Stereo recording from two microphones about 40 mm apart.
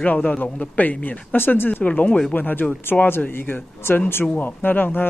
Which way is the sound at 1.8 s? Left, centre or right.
Left.